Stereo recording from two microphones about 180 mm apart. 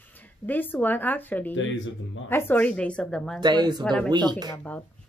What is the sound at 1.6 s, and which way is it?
Speech, 90° left.